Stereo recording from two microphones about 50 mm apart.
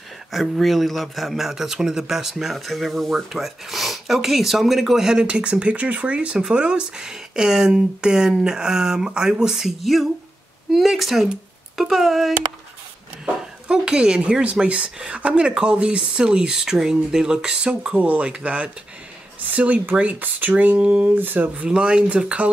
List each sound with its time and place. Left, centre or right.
0.3 s speech: centre
5.2 s speech: right; by 12.4 s centre
13.2 s speech: centre
17.9 s speech: right
21.5 s speech: centre